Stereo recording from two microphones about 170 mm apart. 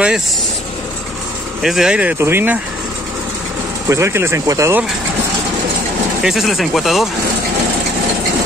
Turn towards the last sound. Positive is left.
turn(degrees=0)  # may be behind; listen again after turning